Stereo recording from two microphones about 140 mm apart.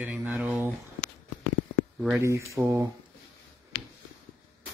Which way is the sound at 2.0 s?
5° right (ahead or behind).